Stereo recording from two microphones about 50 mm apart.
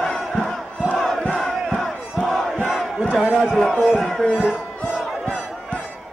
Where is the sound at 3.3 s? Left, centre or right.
Centre.